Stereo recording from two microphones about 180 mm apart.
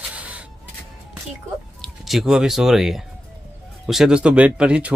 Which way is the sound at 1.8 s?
Centre (ahead or behind).